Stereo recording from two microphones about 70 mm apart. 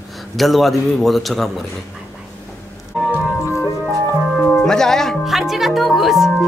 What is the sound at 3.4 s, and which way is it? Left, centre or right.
Music, left.